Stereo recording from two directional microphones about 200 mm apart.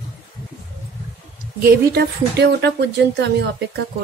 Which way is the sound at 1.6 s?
50° right (ahead or behind).